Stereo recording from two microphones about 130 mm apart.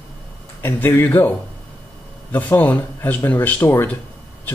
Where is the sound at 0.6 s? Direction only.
15° left (ahead or behind).